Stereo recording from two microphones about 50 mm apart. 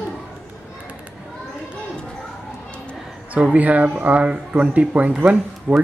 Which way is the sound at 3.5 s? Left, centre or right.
Right.